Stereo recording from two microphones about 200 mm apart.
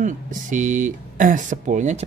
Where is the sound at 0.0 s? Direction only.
40° right (ahead or behind).